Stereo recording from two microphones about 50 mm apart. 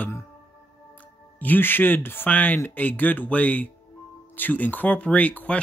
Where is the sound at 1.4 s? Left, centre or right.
Left.